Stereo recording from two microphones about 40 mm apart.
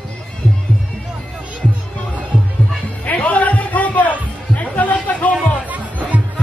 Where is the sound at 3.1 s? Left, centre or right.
Left.